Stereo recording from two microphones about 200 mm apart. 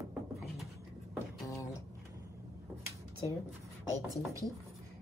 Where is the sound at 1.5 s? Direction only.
15° left (ahead or behind).